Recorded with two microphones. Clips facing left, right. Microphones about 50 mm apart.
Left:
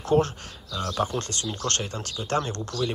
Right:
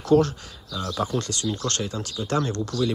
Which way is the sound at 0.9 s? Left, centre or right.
Left.